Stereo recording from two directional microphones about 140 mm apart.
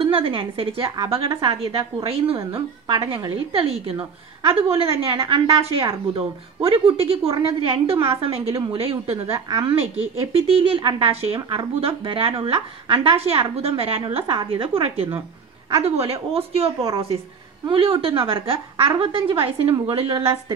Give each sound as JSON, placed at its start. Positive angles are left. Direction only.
{"t": 0.0, "sound": "a woman's voice", "side_deg": -40}